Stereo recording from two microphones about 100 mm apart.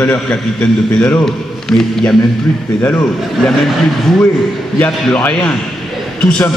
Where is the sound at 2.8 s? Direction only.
15° left (ahead or behind).